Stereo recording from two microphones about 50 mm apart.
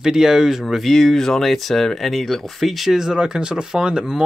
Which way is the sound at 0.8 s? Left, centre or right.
Centre.